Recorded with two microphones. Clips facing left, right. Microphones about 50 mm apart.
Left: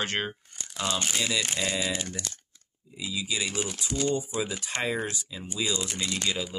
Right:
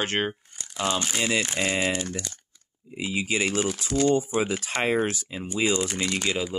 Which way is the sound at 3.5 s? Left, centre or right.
Right.